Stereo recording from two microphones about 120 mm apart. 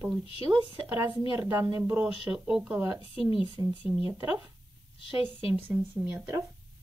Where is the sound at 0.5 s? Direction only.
40° right (ahead or behind).